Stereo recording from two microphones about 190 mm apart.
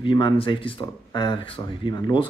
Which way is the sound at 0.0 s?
25° left (ahead or behind).